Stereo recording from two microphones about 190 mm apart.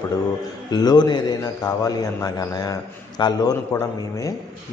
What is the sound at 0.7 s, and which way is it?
Speech, 20° left (ahead or behind).